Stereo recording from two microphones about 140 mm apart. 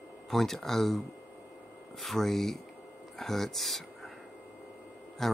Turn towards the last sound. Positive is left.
turn(degrees=0)  # may be behind; listen again after turning